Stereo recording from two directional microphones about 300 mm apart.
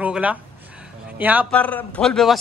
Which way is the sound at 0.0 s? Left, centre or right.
Centre.